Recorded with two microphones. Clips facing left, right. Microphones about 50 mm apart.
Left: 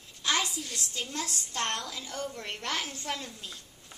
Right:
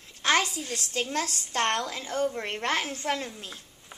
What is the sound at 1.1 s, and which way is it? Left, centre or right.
A child's voice, right.